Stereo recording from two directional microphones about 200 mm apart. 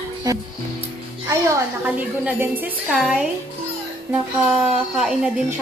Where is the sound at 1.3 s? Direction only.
10° right (ahead or behind).